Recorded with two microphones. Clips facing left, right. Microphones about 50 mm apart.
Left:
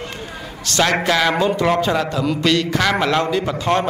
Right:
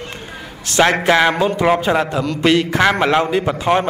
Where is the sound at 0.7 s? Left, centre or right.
Right.